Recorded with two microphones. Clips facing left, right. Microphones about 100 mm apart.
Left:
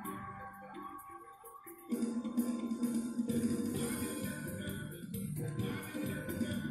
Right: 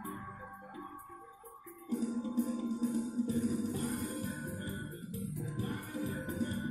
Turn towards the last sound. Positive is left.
turn(degrees=-30)  # may be behind; listen again after turning